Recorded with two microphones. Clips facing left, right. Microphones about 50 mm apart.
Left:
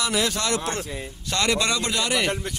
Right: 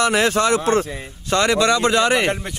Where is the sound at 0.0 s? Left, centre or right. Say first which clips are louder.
Right 8 dB; right.